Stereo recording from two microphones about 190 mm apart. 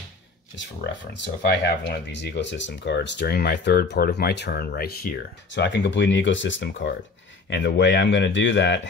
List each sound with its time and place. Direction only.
1.1 s speech: 65° left (ahead or behind)